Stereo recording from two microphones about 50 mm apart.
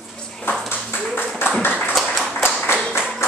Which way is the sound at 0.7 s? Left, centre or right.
Left.